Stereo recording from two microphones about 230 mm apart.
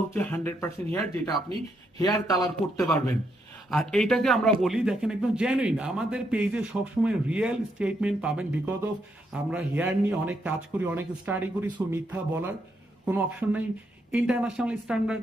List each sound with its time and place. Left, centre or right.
0.1 s speech: centre
3.7 s a man's voice: centre